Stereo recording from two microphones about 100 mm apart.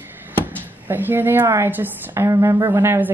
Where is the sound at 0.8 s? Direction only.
20° right (ahead or behind).